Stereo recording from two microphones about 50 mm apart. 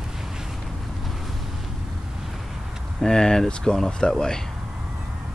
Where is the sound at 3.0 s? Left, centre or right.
Centre.